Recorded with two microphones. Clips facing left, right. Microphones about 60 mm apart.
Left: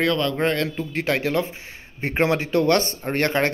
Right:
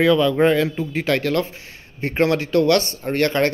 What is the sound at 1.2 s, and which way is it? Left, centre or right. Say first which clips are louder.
Speech: right 1 dB; centre.